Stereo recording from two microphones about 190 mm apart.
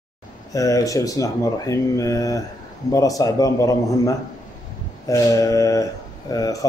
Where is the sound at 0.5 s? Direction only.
15° left (ahead or behind).